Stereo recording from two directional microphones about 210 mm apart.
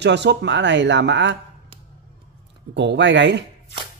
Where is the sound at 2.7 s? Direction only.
55° right (ahead or behind).